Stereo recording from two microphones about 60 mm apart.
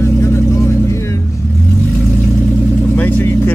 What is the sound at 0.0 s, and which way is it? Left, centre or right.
Vehicle, left.